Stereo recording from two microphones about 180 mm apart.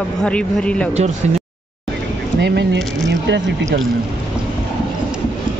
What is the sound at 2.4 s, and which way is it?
Speech, 75° right (ahead or behind).